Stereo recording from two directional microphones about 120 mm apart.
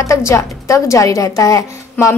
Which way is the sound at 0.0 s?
25° left (ahead or behind).